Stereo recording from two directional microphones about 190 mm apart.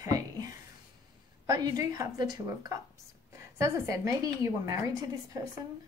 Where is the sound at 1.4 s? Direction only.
20° right (ahead or behind).